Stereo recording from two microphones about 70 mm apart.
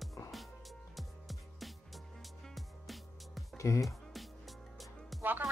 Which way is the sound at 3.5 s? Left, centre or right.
Left.